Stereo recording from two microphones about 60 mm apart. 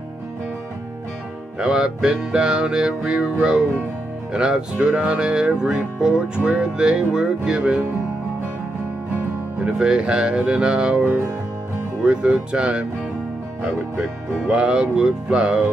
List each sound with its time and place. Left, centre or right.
1.6 s music: centre
9.7 s music: centre
12.0 s speech: centre
13.6 s music: centre